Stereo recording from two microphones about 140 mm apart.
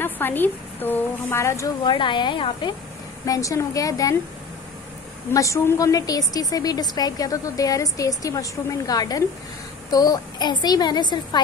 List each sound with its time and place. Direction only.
0.0 s a woman's voice: 15° left (ahead or behind)
1.9 s a woman's voice: 35° left (ahead or behind)
3.3 s a woman's voice: 25° left (ahead or behind)
5.3 s a woman's voice: 20° left (ahead or behind)